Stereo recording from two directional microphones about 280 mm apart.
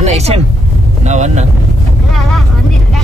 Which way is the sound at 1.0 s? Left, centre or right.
Right.